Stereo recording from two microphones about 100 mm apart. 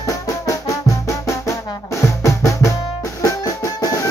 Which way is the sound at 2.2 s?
30° left (ahead or behind).